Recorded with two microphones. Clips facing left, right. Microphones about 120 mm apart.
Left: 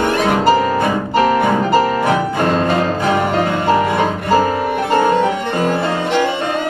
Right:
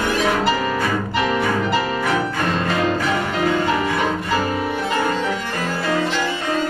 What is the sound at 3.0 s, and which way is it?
Music, 55° left (ahead or behind).